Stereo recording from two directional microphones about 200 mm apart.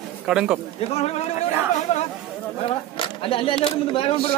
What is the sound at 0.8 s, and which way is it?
Speech, 30° left (ahead or behind).